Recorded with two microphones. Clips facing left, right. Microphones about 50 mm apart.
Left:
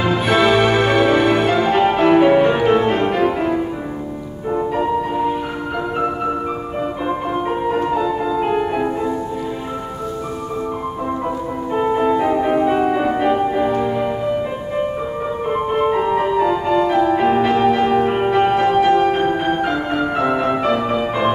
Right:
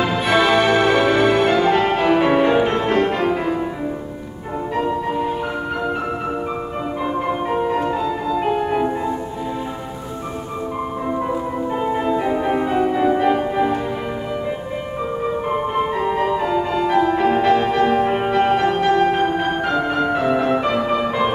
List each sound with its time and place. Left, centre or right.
0.2 s music: centre
11.7 s music: centre
13.3 s music: centre
16.0 s music: centre